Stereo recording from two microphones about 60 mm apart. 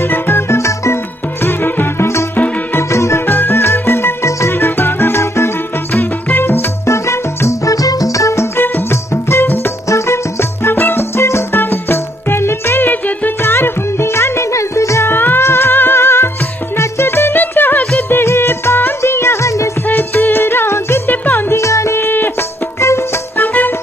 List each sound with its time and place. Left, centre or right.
0.1 s music: left
0.6 s music: left
1.4 s music: left
2.7 s music: left
3.3 s music: left
6.9 s music: left
8.5 s music: left
15.0 s music: left
18.2 s music: left
19.9 s music: left
21.1 s music: left
21.5 s music: left
21.9 s music: left
23.3 s music: left